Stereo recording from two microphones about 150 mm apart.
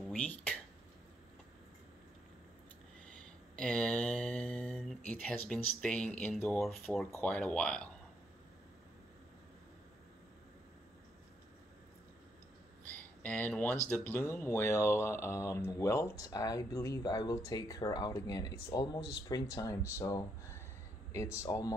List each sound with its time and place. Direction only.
0.1 s speech: 10° left (ahead or behind)
3.1 s mantra: 5° left (ahead or behind)
7.1 s speech: 10° left (ahead or behind)
12.8 s a sound: 10° left (ahead or behind)
13.8 s speech: 15° left (ahead or behind)